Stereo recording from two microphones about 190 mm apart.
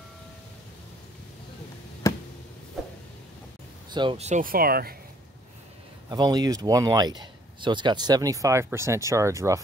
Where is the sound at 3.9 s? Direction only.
25° right (ahead or behind); by 4.9 s 50° right (ahead or behind).